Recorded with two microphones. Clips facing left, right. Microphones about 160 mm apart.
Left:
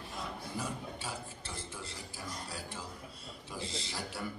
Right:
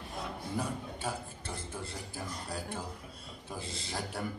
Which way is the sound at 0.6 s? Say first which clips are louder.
Right 4 dB; 55° right (ahead or behind).